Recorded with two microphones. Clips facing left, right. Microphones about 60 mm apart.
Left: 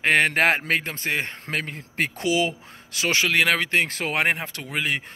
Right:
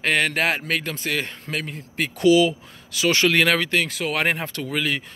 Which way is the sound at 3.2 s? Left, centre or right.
Centre.